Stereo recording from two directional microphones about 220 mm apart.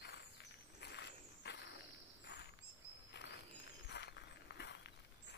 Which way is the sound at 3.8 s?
50° left (ahead or behind).